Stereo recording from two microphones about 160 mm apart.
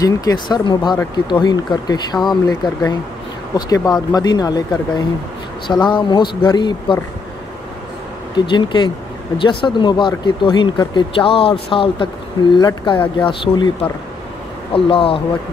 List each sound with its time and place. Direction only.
0.0 s speech: 25° left (ahead or behind)
8.4 s speech: 30° left (ahead or behind)